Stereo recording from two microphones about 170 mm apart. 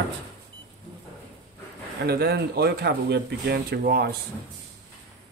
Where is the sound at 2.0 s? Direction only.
70° right (ahead or behind).